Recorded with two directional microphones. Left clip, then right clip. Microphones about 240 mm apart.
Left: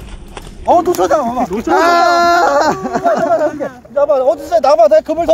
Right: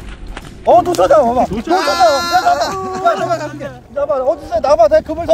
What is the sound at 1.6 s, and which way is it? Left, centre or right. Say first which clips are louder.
Speech: left 5 dB; centre.